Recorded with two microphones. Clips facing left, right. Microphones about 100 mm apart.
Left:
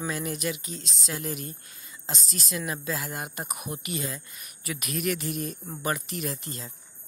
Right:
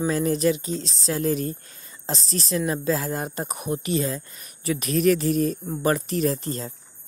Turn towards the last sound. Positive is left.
turn(degrees=-35)  # may be behind; listen again after turning